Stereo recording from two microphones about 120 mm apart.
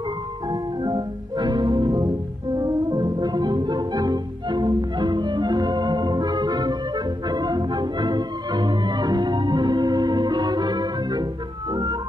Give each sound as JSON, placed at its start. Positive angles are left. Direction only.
{"t": 0.5, "sound": "music", "side_deg": -35}